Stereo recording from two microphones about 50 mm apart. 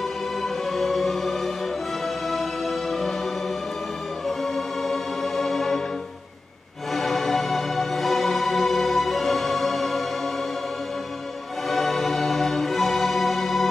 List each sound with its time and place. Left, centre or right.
0.4 s music: centre
4.4 s music: centre
6.9 s music: centre
11.7 s music: centre